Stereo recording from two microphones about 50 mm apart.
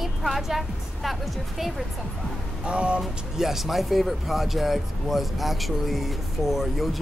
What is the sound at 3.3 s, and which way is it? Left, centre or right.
Speech, centre.